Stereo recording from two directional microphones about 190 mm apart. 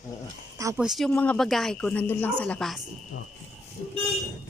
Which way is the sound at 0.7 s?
Centre (ahead or behind).